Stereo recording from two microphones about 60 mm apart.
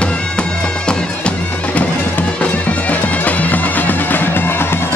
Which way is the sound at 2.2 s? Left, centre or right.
Left.